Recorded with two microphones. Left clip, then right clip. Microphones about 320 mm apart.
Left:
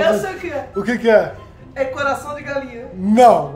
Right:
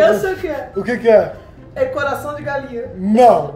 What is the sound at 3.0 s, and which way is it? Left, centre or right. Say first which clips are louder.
Speech: even; centre.